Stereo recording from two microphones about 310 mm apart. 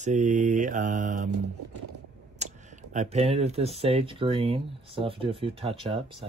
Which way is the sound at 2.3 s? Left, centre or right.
Right.